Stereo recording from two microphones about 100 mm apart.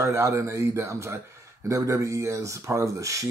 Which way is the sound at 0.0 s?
30° right (ahead or behind).